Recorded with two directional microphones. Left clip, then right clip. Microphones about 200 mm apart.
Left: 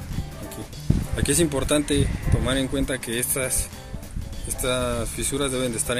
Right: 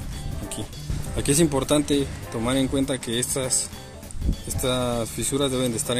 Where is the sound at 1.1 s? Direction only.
40° right (ahead or behind).